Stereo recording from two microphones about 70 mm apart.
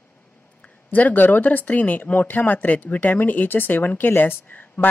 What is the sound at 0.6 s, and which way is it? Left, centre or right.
Speech, left.